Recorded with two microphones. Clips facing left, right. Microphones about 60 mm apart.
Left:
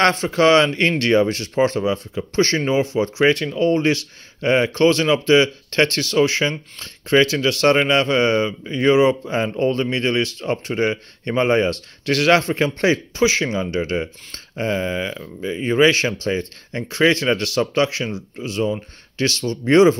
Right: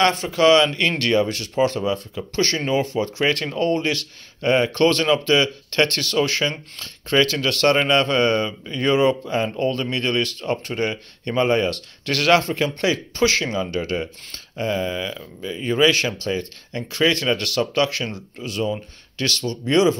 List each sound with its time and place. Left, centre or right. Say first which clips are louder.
0.1 s speech: left 1 dB; left
13.1 s speech: left 2 dB; centre; by 20.0 s left